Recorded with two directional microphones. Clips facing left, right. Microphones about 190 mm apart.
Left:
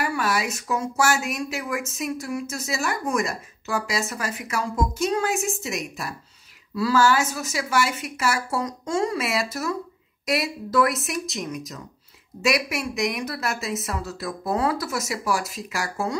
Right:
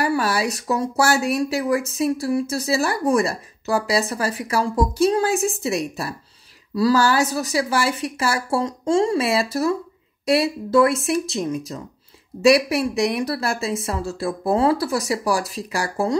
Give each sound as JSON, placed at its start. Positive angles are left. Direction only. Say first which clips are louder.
{"t": 0.0, "sound": "speech", "louder": "right 4 dB", "side_deg": -30}